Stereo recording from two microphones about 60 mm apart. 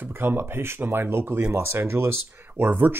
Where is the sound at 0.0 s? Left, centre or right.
Right.